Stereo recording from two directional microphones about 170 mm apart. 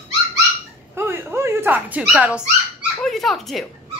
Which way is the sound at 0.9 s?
15° right (ahead or behind).